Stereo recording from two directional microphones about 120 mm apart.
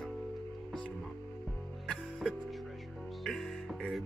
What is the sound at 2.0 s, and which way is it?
Music, centre (ahead or behind).